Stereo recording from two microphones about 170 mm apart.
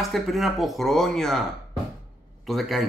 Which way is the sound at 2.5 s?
Centre (ahead or behind).